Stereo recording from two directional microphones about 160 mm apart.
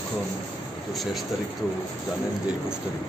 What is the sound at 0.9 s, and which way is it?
Speech, centre (ahead or behind).